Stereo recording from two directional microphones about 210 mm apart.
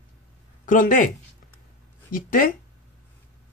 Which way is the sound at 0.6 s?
40° left (ahead or behind).